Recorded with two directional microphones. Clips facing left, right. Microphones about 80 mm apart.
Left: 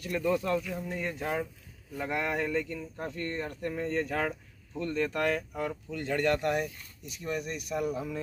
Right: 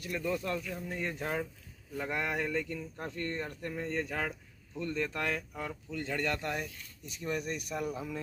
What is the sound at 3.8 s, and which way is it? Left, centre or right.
Speech, centre.